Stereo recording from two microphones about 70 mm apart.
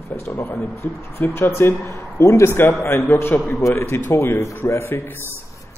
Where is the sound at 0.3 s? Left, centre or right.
Left.